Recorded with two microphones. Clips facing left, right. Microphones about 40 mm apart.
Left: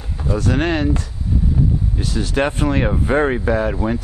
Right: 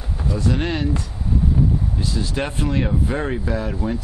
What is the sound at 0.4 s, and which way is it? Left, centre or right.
Speech, left.